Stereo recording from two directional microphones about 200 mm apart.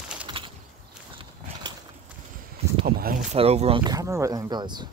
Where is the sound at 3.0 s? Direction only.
40° right (ahead or behind); by 4.8 s 20° right (ahead or behind).